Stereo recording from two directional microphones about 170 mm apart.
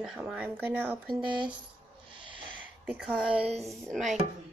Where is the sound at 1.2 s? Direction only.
25° right (ahead or behind).